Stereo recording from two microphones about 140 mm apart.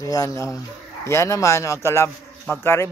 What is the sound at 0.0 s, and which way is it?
Speech, 25° left (ahead or behind).